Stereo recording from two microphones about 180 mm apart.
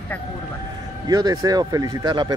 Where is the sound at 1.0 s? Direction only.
20° right (ahead or behind).